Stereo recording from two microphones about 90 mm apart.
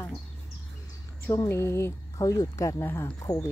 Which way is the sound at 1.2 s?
30° left (ahead or behind).